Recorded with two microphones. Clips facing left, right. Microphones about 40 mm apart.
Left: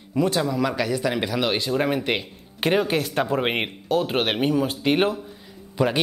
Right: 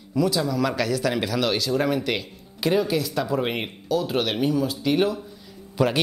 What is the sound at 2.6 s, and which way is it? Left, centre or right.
Speech, left.